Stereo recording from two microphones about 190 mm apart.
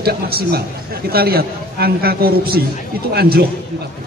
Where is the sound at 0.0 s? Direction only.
55° right (ahead or behind).